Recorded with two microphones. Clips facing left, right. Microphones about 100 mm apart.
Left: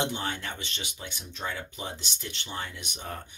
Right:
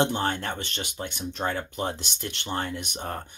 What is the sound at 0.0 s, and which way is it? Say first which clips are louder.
Speech: right 6 dB; 45° right (ahead or behind).